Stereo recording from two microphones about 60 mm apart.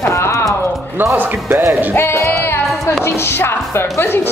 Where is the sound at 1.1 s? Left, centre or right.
Right.